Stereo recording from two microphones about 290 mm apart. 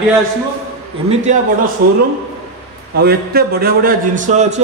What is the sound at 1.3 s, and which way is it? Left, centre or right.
Speech, right.